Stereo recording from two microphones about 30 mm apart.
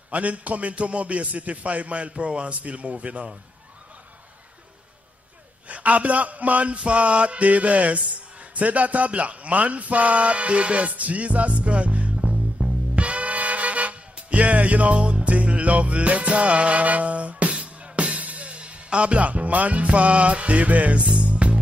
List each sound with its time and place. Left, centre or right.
0.1 s mantra: right
5.7 s mantra: right
10.9 s music: right
14.3 s mantra: right
15.0 s music: right
15.2 s music: right